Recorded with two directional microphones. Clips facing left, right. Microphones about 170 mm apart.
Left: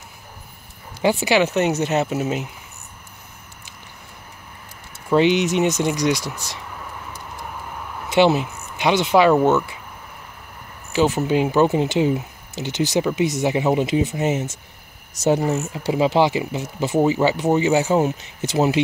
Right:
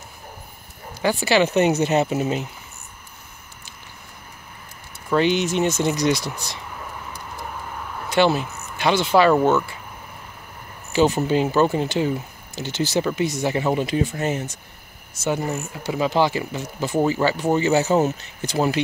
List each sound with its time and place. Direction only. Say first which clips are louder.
1.0 s speech: left 2 dB; 15° left (ahead or behind)
1.4 s speech: right 1 dB; centre (ahead or behind)
5.1 s speech: left 3 dB; 20° left (ahead or behind)
8.1 s speech: left 2 dB; 20° left (ahead or behind)
10.9 s speech: even; 5° left (ahead or behind); by 14.6 s 20° left (ahead or behind)
15.1 s speech: left 5 dB; 40° left (ahead or behind)
15.4 s speech: left 5 dB; 25° left (ahead or behind)